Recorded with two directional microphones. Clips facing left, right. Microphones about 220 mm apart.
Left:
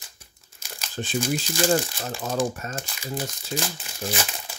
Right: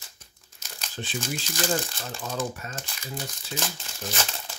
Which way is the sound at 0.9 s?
45° left (ahead or behind).